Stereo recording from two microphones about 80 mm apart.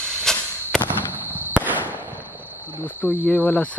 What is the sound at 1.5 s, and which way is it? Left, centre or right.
Fireworks, right.